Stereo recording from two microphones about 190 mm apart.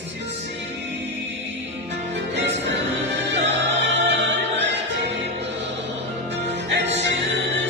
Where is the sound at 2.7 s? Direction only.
70° right (ahead or behind).